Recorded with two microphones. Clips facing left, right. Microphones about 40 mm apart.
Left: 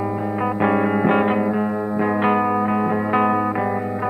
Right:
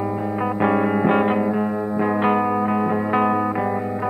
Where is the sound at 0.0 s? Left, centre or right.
Centre.